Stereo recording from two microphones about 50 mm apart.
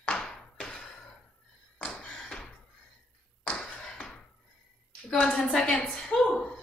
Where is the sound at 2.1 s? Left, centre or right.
Centre.